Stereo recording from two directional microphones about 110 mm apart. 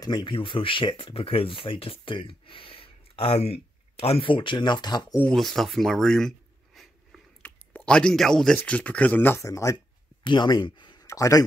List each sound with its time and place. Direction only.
0.0 s speech: 45° left (ahead or behind)
5.3 s a sound: centre (ahead or behind)
7.4 s speech: 10° left (ahead or behind); by 9.8 s 30° left (ahead or behind)
10.2 s speech: 45° left (ahead or behind)
11.1 s speech: 30° left (ahead or behind)